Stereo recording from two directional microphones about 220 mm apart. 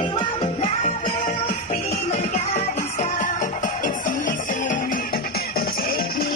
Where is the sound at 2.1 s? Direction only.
30° left (ahead or behind).